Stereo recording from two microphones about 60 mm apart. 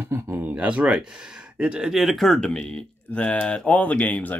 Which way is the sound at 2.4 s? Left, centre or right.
Centre.